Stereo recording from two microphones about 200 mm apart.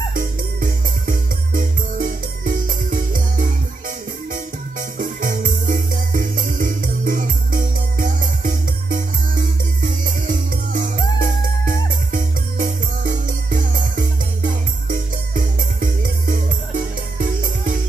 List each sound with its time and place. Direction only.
0.1 s music: 45° right (ahead or behind)
10.0 s music: 45° right (ahead or behind)